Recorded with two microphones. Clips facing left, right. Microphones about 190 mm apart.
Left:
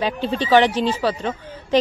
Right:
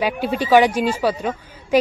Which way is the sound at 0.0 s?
10° right (ahead or behind).